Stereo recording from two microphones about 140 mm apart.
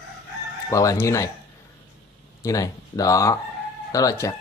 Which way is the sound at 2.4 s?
25° left (ahead or behind).